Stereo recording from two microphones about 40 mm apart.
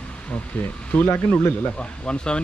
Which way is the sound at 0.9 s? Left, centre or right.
Left.